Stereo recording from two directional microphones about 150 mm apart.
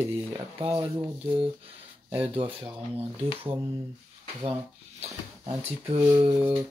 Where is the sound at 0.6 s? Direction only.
35° right (ahead or behind).